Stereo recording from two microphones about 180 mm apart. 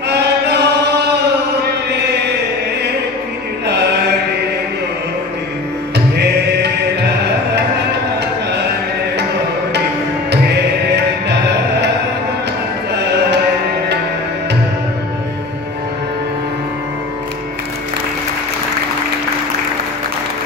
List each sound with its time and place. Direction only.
0.1 s chant: 70° right (ahead or behind)
3.6 s chant: 70° right (ahead or behind)
6.1 s music: 65° right (ahead or behind)
10.3 s music: 70° right (ahead or behind)
12.9 s music: 65° right (ahead or behind)